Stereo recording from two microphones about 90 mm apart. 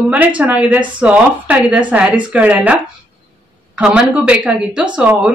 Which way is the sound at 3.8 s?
10° right (ahead or behind).